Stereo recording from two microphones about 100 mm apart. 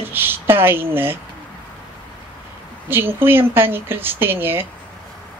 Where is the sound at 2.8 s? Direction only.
20° right (ahead or behind).